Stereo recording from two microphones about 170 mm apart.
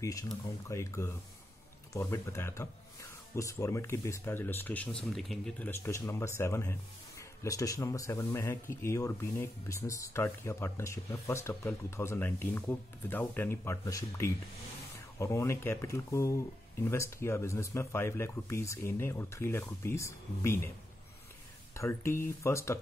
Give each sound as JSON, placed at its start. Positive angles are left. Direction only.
{"t": 0.0, "sound": "a man's voice", "side_deg": 20}
{"t": 5.7, "sound": "a man's voice", "side_deg": 15}
{"t": 21.7, "sound": "a man's voice", "side_deg": 15}